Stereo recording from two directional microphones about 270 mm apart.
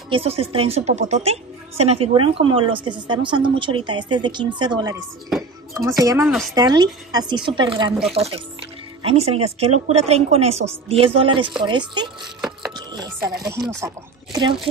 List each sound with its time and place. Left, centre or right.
0.1 s speech: right
9.0 s speech: right
12.7 s chopping: centre
13.5 s speech: centre